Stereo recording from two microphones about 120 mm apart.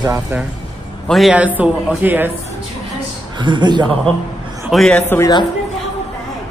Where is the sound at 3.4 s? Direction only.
40° right (ahead or behind).